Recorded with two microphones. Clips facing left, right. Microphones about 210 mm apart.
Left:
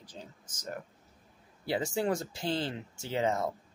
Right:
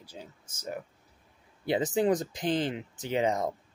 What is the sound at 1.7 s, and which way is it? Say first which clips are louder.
Speech: right 5 dB; 20° right (ahead or behind).